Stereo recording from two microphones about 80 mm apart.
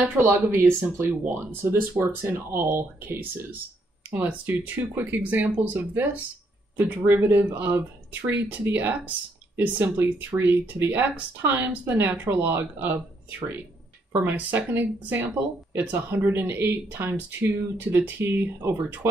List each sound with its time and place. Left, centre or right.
0.1 s speech: right
1.1 s speech: centre
1.4 s speech: right
14.2 s speech: right